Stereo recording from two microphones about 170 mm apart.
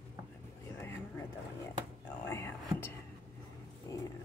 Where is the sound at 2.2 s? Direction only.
15° left (ahead or behind).